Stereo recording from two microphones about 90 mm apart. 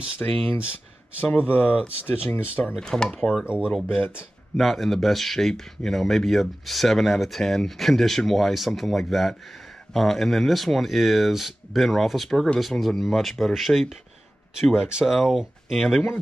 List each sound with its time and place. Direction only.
0.2 s speech: 20° left (ahead or behind)
2.6 s speech: 5° left (ahead or behind)
3.4 s speech: 15° right (ahead or behind)
4.6 s speech: centre (ahead or behind)